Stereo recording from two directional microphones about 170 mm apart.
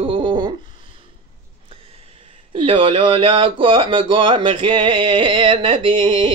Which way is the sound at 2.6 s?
30° right (ahead or behind).